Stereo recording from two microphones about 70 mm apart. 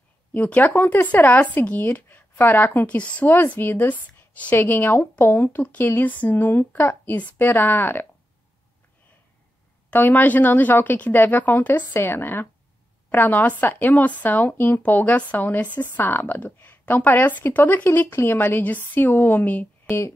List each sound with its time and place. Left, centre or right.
0.3 s a woman's voice: left
3.0 s speech: centre
3.3 s a woman's voice: left
9.8 s a woman's voice: left